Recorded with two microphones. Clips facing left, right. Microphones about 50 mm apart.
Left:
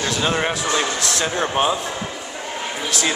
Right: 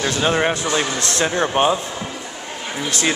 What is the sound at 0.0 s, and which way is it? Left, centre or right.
A man's voice, centre.